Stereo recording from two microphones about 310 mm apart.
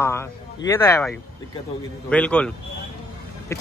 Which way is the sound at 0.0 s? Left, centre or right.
Centre.